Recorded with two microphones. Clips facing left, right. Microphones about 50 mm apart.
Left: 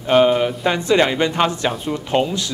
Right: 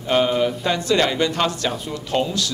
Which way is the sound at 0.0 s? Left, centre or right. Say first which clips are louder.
Left 4 dB; centre.